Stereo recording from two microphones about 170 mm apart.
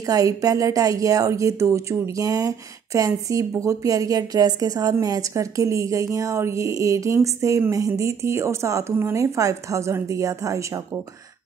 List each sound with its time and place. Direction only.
0.0 s speech: 20° right (ahead or behind)